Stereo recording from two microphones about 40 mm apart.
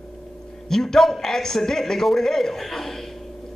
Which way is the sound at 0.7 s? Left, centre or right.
Centre.